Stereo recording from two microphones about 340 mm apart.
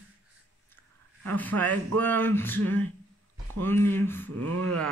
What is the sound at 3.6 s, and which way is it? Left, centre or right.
Speech, centre.